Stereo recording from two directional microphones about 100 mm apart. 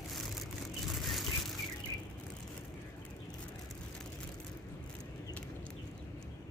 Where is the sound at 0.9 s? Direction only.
Centre (ahead or behind).